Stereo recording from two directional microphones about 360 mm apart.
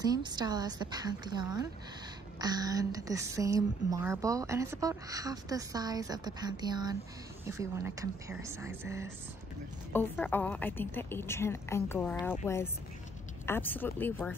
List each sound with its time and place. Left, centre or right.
0.0 s a woman's voice: centre
9.9 s a woman's voice: centre